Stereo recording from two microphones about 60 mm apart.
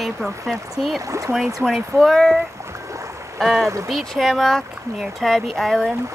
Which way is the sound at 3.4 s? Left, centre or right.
Centre.